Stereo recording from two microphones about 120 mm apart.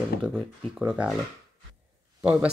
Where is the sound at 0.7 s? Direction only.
10° right (ahead or behind).